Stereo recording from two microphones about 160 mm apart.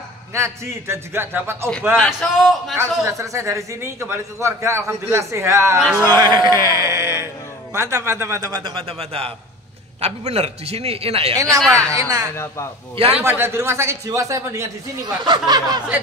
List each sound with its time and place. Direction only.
0.3 s speech: 15° right (ahead or behind)
2.0 s a man's voice: centre (ahead or behind)
2.8 s a man's voice: 15° right (ahead or behind)
8.6 s a man's voice: 35° right (ahead or behind)
11.3 s a man's voice: 20° right (ahead or behind)
12.9 s a man's voice: 35° right (ahead or behind)
13.2 s a man's voice: 15° right (ahead or behind)